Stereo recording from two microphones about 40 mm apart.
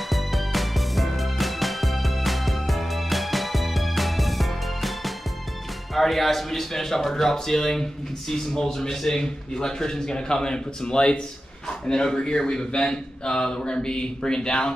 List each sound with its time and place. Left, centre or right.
0.1 s music: centre
5.9 s a man's voice: centre; by 14.7 s left